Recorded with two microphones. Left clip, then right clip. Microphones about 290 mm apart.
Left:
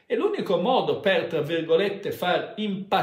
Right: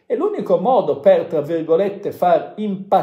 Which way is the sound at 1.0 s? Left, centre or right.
Left.